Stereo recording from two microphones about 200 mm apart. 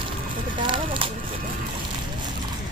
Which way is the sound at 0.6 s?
25° right (ahead or behind).